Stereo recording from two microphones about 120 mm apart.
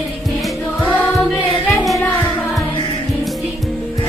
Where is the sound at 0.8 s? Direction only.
20° left (ahead or behind).